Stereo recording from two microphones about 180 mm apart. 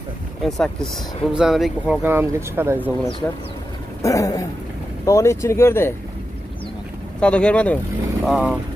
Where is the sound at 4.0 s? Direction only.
15° left (ahead or behind).